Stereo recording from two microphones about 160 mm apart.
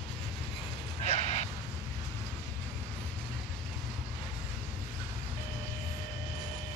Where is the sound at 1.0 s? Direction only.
45° left (ahead or behind).